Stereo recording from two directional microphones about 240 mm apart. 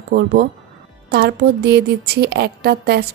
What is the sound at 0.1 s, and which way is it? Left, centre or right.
A woman's voice, right.